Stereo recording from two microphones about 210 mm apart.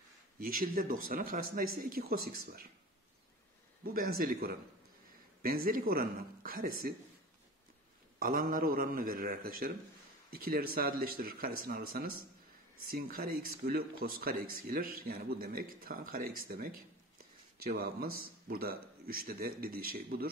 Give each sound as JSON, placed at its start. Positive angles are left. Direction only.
{"t": 0.4, "sound": "speech", "side_deg": -45}
{"t": 3.8, "sound": "speech", "side_deg": -45}
{"t": 8.2, "sound": "speech", "side_deg": -40}
{"t": 12.9, "sound": "speech", "side_deg": -45}
{"t": 17.2, "sound": "a sound", "side_deg": -45}
{"t": 18.2, "sound": "speech", "side_deg": -45}